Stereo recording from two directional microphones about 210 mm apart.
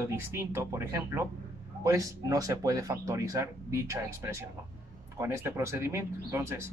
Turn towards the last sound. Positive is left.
turn(degrees=-15)  # may be behind; listen again after turning